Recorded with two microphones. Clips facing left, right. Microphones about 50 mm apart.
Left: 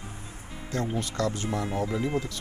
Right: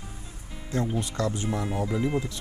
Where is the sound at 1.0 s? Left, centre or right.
Right.